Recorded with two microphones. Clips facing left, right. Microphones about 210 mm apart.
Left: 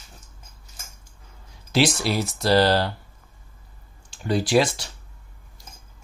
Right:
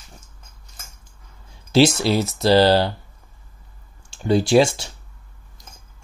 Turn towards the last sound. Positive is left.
turn(degrees=-25)  # may be behind; listen again after turning